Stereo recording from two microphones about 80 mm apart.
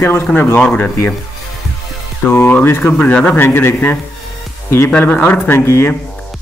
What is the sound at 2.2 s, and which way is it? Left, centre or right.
A man's voice, left.